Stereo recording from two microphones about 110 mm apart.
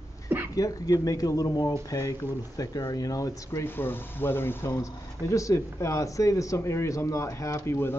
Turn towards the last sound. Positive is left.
turn(degrees=25)  # may be behind; listen again after turning